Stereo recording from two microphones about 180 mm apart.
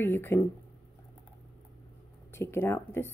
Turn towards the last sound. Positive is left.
turn(degrees=10)  # may be behind; listen again after turning